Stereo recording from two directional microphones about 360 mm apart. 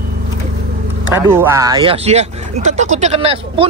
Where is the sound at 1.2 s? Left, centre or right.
Centre.